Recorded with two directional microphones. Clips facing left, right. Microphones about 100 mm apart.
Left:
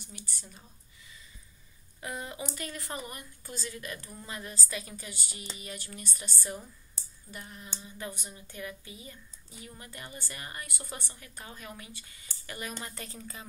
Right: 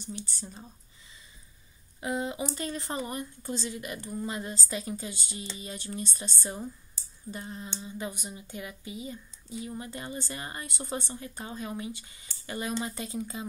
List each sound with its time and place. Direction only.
0.0 s speech: 30° right (ahead or behind)
2.0 s speech: 20° right (ahead or behind)